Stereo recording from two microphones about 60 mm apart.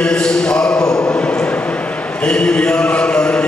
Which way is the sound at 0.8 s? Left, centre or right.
Left.